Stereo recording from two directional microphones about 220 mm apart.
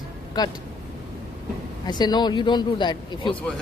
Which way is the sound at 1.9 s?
20° left (ahead or behind).